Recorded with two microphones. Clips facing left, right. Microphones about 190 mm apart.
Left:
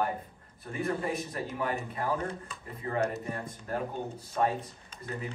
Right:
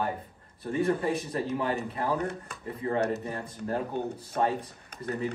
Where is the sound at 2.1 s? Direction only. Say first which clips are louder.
Right 3 dB; 65° right (ahead or behind).